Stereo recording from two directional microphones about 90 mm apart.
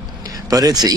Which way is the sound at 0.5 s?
45° right (ahead or behind).